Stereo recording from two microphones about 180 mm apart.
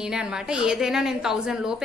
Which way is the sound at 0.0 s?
5° right (ahead or behind).